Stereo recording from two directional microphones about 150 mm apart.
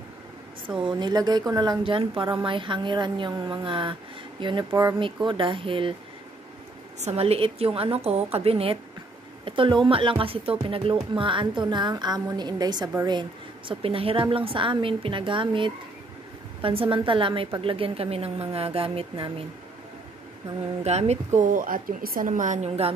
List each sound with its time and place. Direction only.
0.7 s a woman's voice: 30° right (ahead or behind)
1.8 s a woman's voice: 35° right (ahead or behind)
7.0 s a woman's voice: 45° right (ahead or behind)
20.8 s a woman's voice: 45° right (ahead or behind)